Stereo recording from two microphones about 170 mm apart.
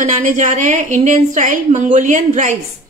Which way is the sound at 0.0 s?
50° right (ahead or behind).